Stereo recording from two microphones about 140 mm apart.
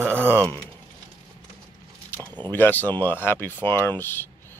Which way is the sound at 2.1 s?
15° left (ahead or behind).